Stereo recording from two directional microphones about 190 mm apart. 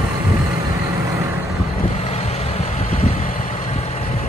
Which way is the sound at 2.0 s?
35° left (ahead or behind).